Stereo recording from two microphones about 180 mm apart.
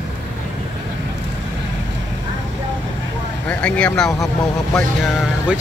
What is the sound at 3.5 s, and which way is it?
Speech, 5° left (ahead or behind).